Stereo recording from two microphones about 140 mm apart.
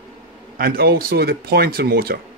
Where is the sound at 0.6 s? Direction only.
90° right.